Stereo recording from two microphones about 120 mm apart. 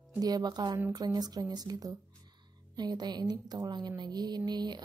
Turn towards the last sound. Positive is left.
turn(degrees=-35)  # may be behind; listen again after turning